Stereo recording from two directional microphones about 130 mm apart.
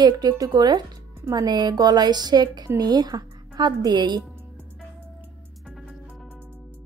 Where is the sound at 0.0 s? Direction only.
30° right (ahead or behind).